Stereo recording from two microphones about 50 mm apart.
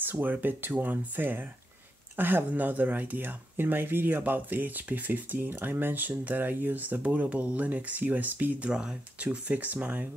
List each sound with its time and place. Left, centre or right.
0.0 s speech: right
8.6 s speech: centre
9.2 s speech: right